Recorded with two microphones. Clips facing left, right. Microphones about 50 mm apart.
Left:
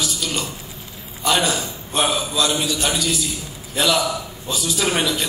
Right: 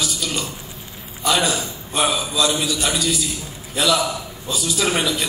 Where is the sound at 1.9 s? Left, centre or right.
Left.